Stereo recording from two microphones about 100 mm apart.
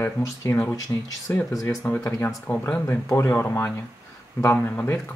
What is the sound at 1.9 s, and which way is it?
Speech, 15° left (ahead or behind).